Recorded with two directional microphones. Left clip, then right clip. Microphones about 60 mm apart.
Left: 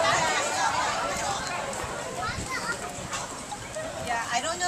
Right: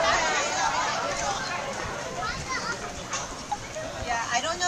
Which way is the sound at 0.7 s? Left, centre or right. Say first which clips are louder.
Even; centre.